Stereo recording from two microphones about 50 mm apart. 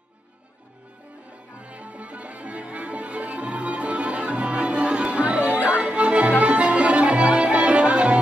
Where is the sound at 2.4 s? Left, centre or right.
Right.